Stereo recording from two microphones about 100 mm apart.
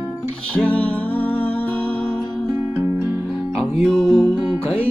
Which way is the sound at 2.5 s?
25° right (ahead or behind).